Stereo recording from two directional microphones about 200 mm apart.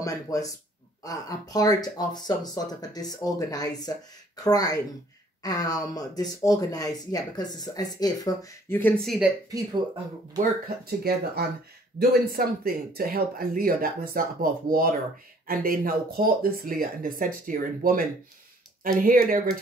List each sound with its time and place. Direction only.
0.0 s speech: 15° left (ahead or behind); by 9.3 s centre (ahead or behind)
9.5 s speech: 20° right (ahead or behind)
10.9 s speech: 50° right (ahead or behind)